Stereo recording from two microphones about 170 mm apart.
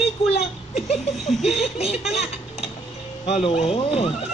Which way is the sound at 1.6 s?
40° left (ahead or behind).